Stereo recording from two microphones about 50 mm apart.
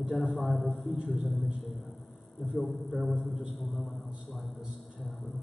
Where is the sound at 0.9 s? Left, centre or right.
Centre.